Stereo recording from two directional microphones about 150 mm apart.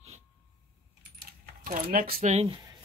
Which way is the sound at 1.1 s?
70° right (ahead or behind).